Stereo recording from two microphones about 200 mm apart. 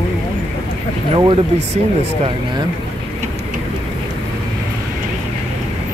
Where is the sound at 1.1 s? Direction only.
25° right (ahead or behind).